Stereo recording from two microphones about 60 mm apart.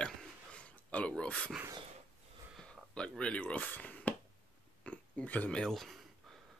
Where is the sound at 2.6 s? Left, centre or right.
Centre.